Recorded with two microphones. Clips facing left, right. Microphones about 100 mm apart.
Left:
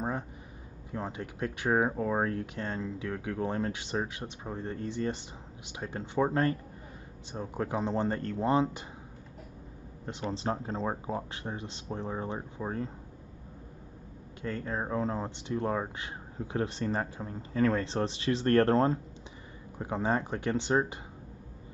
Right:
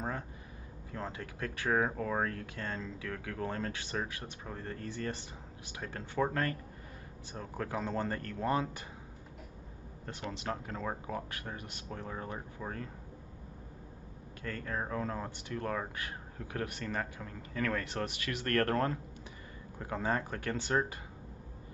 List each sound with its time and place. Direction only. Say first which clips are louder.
0.9 s speech: left 4 dB; 20° left (ahead or behind)
10.0 s speech: left 6 dB; 30° left (ahead or behind)
14.4 s speech: left 4 dB; 20° left (ahead or behind)